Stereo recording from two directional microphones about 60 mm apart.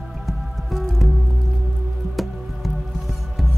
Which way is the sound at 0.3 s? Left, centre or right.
Centre.